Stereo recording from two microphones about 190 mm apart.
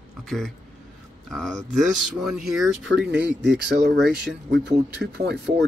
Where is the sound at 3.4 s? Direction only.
65° right (ahead or behind).